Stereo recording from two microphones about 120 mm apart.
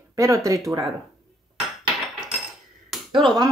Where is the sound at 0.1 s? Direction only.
25° right (ahead or behind).